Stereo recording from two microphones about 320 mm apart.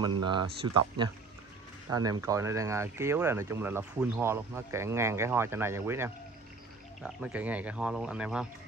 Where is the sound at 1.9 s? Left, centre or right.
Centre.